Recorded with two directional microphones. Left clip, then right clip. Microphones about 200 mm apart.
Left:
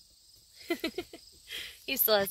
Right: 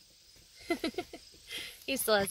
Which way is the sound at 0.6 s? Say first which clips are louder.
Even; 20° left (ahead or behind).